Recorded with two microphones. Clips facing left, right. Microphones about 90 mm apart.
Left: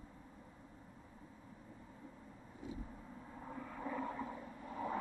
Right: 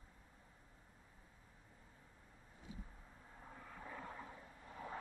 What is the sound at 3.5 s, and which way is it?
Vehicle, 60° left (ahead or behind).